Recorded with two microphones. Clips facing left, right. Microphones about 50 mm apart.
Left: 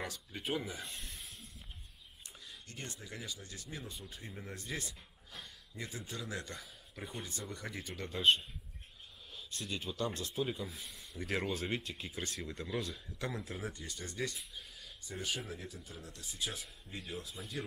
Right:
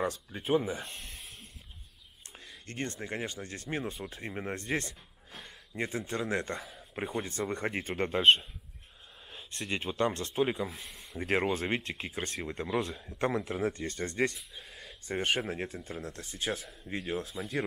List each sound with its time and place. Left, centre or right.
0.0 s speech: right
2.6 s speech: right
11.1 s speech: right
17.4 s speech: right